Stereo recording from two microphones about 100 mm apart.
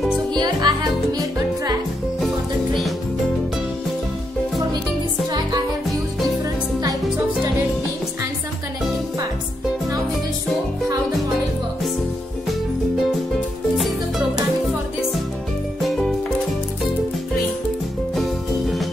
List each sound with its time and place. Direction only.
0.4 s music: 45° right (ahead or behind)
2.1 s music: centre (ahead or behind)
13.7 s music: centre (ahead or behind)